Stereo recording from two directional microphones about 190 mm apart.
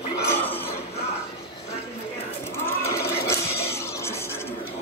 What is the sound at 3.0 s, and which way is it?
Music, 55° left (ahead or behind).